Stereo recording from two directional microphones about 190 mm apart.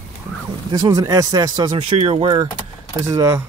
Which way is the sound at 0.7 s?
20° right (ahead or behind).